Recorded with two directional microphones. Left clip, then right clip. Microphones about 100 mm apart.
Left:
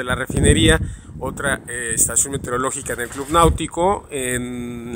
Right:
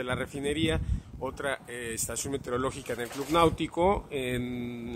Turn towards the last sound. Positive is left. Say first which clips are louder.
# left 7 dB
turn(degrees=30)  # may be behind; listen again after turning